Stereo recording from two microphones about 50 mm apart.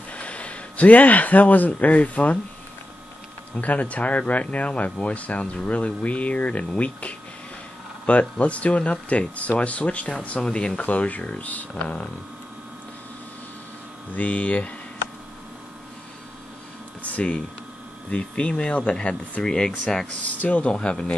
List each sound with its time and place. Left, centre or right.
0.1 s speech: left
3.6 s speech: left
10.8 s speech: left
14.1 s speech: left
17.0 s speech: left
20.3 s speech: left
20.7 s speech: centre